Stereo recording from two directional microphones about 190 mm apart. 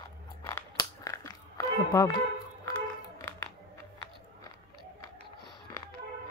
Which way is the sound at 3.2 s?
15° left (ahead or behind).